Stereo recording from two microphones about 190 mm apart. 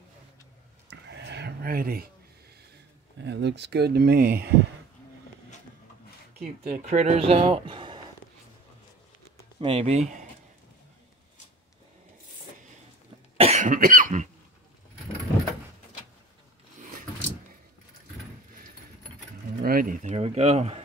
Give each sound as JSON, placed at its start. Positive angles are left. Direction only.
{"t": 0.8, "sound": "a sound", "side_deg": -65}
{"t": 3.3, "sound": "speech", "side_deg": -65}
{"t": 6.4, "sound": "speech", "side_deg": -45}
{"t": 9.6, "sound": "speech", "side_deg": -30}
{"t": 13.4, "sound": "cough", "side_deg": -35}
{"t": 19.6, "sound": "a sound", "side_deg": -50}